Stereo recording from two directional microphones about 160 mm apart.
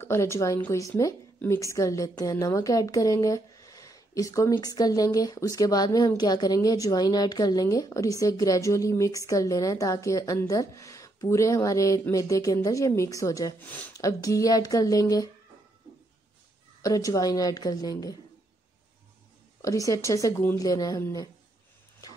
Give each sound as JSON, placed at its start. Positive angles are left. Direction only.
{"t": 0.0, "sound": "a woman's voice", "side_deg": 15}
{"t": 16.8, "sound": "a woman's voice", "side_deg": 20}
{"t": 19.6, "sound": "a woman's voice", "side_deg": 20}
{"t": 22.0, "sound": "a sound", "side_deg": 20}